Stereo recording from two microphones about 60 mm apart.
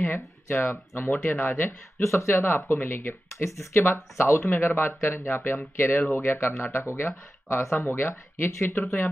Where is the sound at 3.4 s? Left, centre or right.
Left.